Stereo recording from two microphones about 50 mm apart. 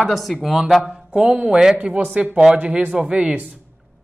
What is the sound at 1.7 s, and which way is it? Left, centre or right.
Speech, right.